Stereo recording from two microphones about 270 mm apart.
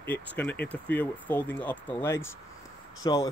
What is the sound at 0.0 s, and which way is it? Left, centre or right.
A man's voice, centre.